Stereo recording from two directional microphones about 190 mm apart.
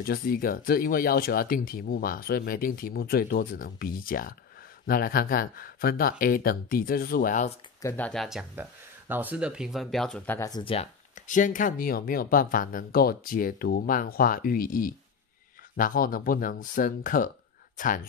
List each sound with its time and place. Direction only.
0.0 s speech: 50° left (ahead or behind)
7.8 s speech: 10° left (ahead or behind)
10.6 s speech: 30° left (ahead or behind)
11.2 s speech: 45° left (ahead or behind)